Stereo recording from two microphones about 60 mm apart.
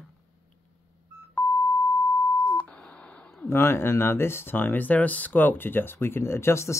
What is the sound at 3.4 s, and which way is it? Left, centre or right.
Speech, left.